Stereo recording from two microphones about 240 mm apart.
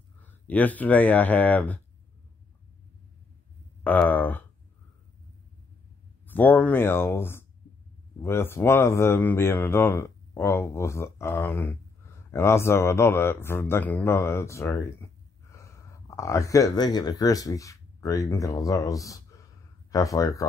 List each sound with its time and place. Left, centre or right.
0.2 s speech: centre
3.8 s speech: centre
6.2 s speech: centre